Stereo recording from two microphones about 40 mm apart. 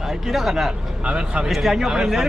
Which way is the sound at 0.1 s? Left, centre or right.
Centre.